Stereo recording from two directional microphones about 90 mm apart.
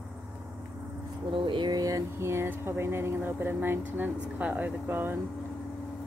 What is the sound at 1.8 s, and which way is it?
Speech, 35° right (ahead or behind).